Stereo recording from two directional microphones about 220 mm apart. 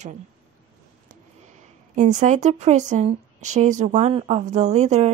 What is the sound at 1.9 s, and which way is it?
Speech, 35° right (ahead or behind).